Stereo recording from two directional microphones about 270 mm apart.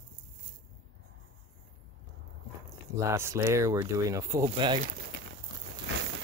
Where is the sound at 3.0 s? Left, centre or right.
Centre.